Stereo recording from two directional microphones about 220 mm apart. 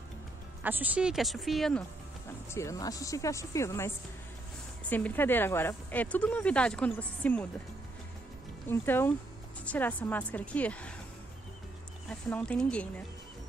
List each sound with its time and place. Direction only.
0.6 s speech: 5° right (ahead or behind)
2.5 s speech: 15° left (ahead or behind)
8.6 s speech: 10° left (ahead or behind)
12.1 s speech: 5° left (ahead or behind)